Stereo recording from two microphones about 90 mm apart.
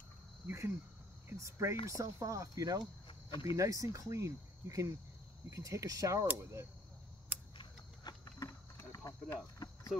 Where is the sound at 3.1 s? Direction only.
70° left (ahead or behind).